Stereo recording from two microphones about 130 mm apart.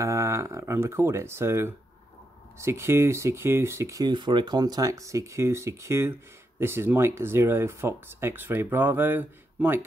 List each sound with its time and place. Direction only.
0.0 s speech: 25° right (ahead or behind)
4.0 s speech: 35° right (ahead or behind); by 9.8 s 15° right (ahead or behind)